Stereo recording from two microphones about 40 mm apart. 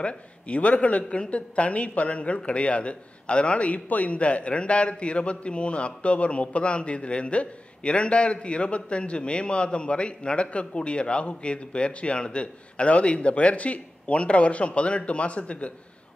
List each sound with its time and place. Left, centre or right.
0.0 s a man's voice: left